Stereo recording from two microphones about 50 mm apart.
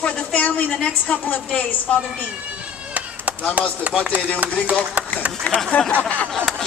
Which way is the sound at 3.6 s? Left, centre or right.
Right.